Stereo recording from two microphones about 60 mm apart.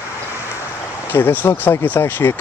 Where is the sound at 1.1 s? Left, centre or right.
Left.